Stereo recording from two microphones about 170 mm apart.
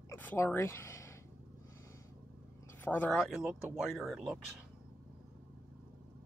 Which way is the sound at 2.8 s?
10° left (ahead or behind).